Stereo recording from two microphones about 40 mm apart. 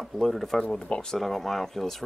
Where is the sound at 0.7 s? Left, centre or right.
Centre.